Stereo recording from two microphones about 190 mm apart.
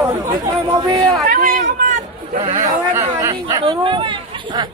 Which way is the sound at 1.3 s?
45° right (ahead or behind).